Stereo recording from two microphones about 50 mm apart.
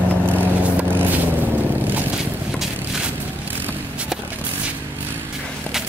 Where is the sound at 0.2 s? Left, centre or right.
Right.